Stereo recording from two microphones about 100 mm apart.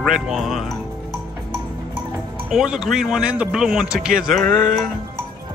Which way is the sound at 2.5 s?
5° right (ahead or behind).